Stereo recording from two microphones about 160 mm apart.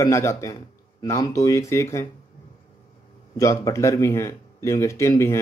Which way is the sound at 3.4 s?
20° left (ahead or behind).